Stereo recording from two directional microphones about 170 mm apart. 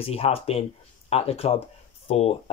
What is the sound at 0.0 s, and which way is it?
Speech, 35° left (ahead or behind).